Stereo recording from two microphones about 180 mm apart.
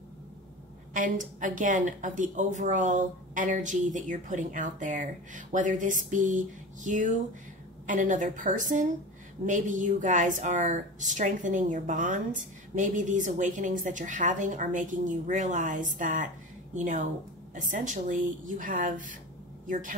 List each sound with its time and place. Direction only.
0.9 s a woman's voice: 45° right (ahead or behind)